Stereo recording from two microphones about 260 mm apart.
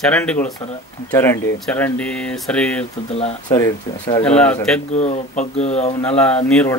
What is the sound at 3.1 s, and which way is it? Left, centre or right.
Speech, left.